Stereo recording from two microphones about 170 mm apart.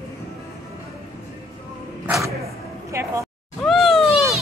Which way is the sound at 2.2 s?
15° right (ahead or behind).